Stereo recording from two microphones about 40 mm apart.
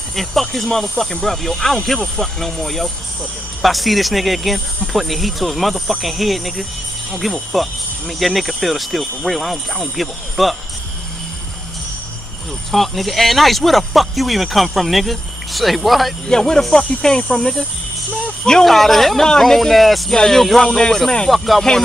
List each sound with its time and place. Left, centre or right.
0.1 s speech: centre
12.7 s speech: centre
16.3 s music: centre
18.4 s speech: centre
18.7 s speech: centre
20.1 s music: centre
21.3 s speech: centre